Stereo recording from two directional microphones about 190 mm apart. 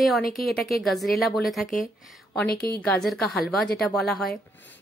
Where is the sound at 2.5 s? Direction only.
55° left (ahead or behind).